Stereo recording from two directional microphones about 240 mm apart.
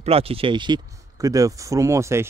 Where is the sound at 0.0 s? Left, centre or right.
Right.